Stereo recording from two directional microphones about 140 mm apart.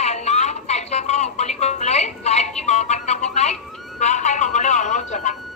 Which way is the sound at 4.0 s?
55° left (ahead or behind).